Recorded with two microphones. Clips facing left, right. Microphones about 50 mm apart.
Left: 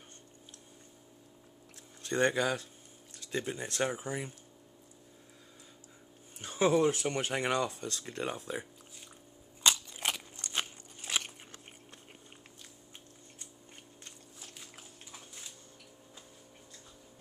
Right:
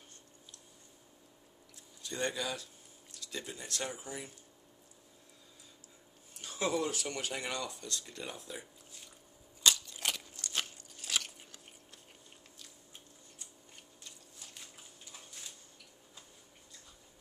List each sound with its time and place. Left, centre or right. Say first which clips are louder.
2.0 s speech: left 7 dB; left
6.4 s speech: left 7 dB; left
9.6 s biting: left 1 dB; left